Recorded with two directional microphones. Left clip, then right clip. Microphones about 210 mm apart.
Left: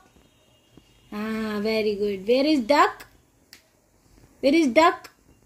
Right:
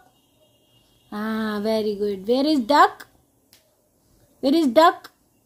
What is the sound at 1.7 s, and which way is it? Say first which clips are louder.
Speech: right 1 dB; 65° right (ahead or behind).